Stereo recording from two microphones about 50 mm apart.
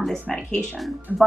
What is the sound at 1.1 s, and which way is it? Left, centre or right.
Speech, right.